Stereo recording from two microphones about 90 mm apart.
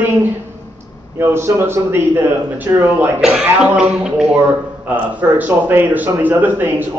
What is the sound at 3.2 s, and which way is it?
A man's voice, 10° right (ahead or behind).